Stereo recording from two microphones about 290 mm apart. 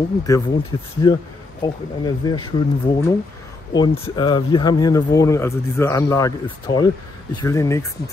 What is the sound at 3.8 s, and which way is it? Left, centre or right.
Speech, centre.